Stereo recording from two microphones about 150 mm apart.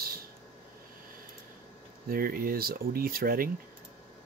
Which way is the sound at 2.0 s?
75° right (ahead or behind).